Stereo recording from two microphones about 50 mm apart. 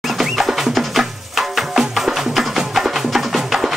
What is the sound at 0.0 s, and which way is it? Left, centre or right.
Music, centre.